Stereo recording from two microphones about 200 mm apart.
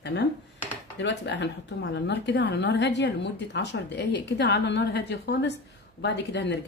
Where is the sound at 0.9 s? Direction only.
60° left (ahead or behind).